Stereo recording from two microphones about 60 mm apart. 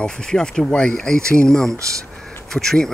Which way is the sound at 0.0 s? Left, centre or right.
Centre.